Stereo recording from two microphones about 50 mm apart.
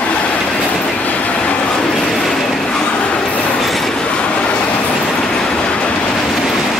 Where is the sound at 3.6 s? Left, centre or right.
Centre.